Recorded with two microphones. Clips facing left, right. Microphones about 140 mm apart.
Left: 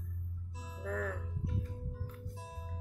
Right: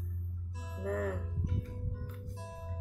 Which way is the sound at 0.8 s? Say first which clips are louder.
Right 4 dB; 45° right (ahead or behind).